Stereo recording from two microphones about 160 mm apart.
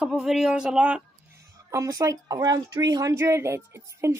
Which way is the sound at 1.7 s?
20° right (ahead or behind).